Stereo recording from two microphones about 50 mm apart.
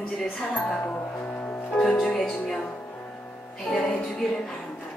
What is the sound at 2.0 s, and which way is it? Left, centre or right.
Speech, centre.